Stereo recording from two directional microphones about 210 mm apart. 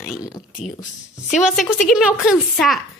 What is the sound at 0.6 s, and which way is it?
Speech, 35° left (ahead or behind).